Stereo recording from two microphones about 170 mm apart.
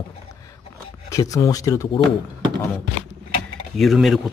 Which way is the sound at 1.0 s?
20° left (ahead or behind).